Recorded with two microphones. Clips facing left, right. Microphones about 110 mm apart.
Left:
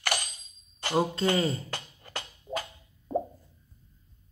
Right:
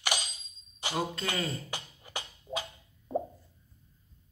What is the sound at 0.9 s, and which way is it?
Speech, 25° left (ahead or behind).